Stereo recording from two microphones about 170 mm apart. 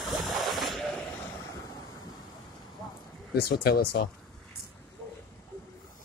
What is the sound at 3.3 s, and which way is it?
Speech, 65° left (ahead or behind).